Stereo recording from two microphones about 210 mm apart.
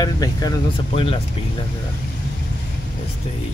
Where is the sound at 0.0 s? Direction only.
20° left (ahead or behind).